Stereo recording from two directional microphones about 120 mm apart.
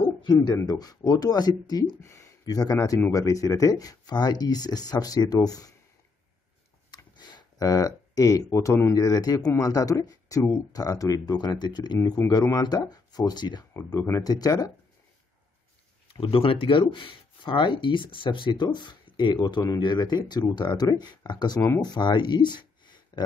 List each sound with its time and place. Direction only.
0.2 s a man's voice: 35° left (ahead or behind)
7.2 s speech: 40° left (ahead or behind)
13.8 s speech: 20° left (ahead or behind)
14.3 s speech: 30° left (ahead or behind)
16.1 s speech: 50° left (ahead or behind)